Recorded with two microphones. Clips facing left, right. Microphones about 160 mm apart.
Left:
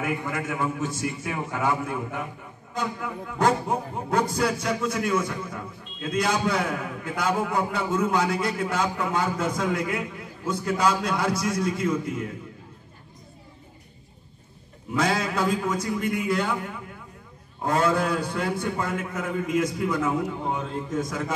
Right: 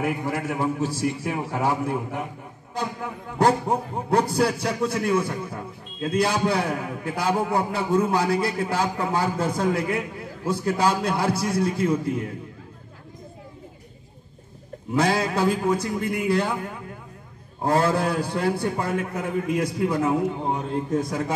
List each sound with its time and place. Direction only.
0.0 s a man's voice: 35° right (ahead or behind)
15.0 s a man's voice: 35° right (ahead or behind)
17.6 s a man's voice: 35° right (ahead or behind)